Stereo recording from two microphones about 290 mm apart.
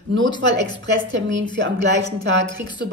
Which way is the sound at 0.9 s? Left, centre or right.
Right.